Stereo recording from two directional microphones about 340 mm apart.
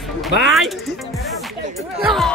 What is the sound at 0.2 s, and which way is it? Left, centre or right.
Speech, centre.